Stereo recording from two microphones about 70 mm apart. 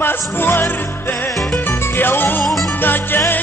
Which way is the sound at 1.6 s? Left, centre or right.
Left.